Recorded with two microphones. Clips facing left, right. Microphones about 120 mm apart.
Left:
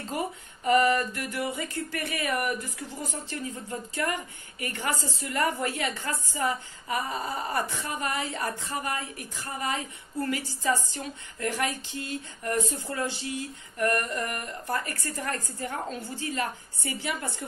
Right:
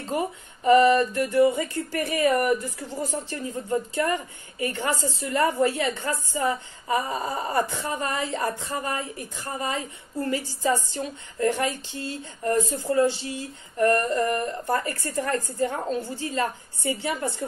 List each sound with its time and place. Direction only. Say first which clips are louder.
0.1 s a sound: right 5 dB; 30° right (ahead or behind)
3.3 s a woman's voice: right 6 dB; 30° right (ahead or behind)
15.6 s a woman's voice: right 7 dB; 25° right (ahead or behind)